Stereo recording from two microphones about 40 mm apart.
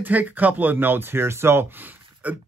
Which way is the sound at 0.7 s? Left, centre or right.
Right.